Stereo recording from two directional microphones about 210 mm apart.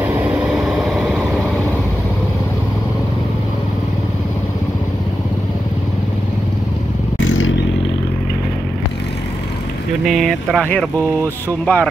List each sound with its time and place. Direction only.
0.0 s vehicle: 5° right (ahead or behind)
7.2 s vehicle: 70° left (ahead or behind)
10.0 s speech: centre (ahead or behind)